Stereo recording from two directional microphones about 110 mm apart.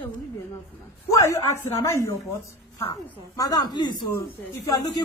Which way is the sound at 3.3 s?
35° left (ahead or behind).